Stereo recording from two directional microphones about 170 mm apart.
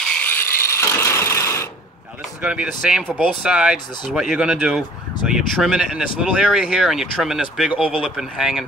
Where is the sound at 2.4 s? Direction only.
5° right (ahead or behind).